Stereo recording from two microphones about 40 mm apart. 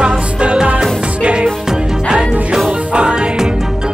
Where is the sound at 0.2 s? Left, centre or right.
Right.